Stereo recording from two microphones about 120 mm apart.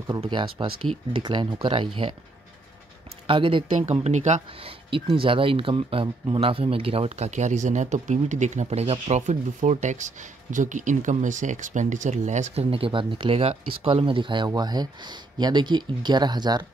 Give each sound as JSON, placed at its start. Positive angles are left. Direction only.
{"t": 0.2, "sound": "speech", "side_deg": -40}
{"t": 3.3, "sound": "speech", "side_deg": -45}
{"t": 3.9, "sound": "speech", "side_deg": -70}
{"t": 4.5, "sound": "speech", "side_deg": -50}
{"t": 12.7, "sound": "speech", "side_deg": -45}